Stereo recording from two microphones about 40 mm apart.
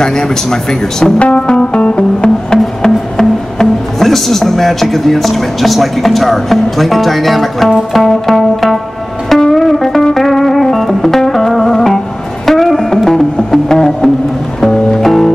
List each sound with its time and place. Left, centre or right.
0.0 s speech: centre
1.2 s music: left
2.8 s speech: centre
9.3 s music: centre